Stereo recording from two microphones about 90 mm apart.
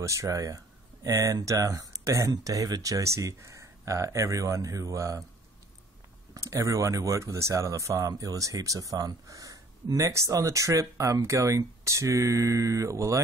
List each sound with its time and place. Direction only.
0.0 s speech: 35° right (ahead or behind)
6.3 s speech: 35° right (ahead or behind)